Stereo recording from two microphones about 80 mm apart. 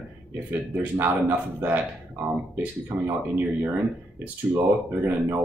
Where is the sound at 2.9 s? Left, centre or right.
Right.